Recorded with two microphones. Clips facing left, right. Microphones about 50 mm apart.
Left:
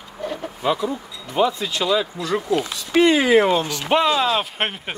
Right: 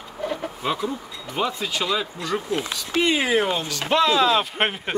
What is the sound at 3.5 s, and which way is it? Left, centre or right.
Speech, left.